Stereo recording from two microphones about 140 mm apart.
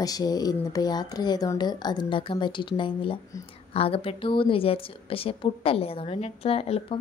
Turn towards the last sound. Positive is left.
turn(degrees=45)  # may be behind; listen again after turning